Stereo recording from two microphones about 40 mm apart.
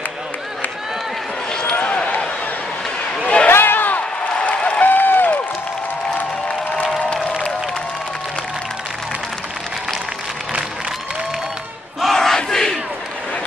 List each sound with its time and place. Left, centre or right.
1.5 s a sound: left
3.4 s a sound: left
4.4 s applause: left
4.8 s applause: left
12.0 s battle cry: centre
12.4 s crowd: centre